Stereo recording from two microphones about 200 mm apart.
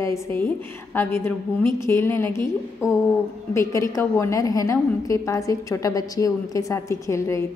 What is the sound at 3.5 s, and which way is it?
A woman's voice, 15° left (ahead or behind).